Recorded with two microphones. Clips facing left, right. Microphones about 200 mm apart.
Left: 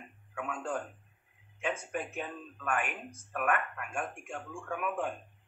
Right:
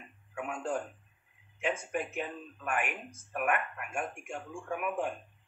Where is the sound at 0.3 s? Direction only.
25° right (ahead or behind).